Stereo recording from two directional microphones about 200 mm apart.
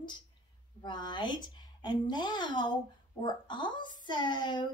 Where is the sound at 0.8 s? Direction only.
20° left (ahead or behind).